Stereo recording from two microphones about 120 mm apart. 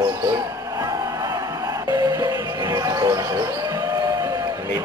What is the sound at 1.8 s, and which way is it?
Music, 30° right (ahead or behind).